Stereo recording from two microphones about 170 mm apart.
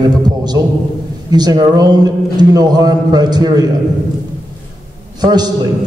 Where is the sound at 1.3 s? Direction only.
25° right (ahead or behind).